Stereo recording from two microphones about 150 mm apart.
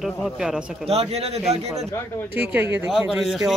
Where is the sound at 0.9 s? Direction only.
45° right (ahead or behind).